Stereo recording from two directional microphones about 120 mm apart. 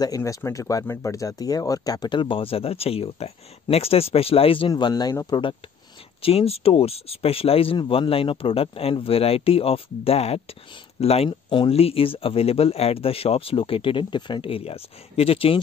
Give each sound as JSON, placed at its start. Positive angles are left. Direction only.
{"t": 0.0, "sound": "speech", "side_deg": 30}
{"t": 6.2, "sound": "speech", "side_deg": 55}
{"t": 11.2, "sound": "speech", "side_deg": 45}